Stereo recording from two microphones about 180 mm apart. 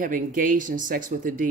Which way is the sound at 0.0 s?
50° right (ahead or behind).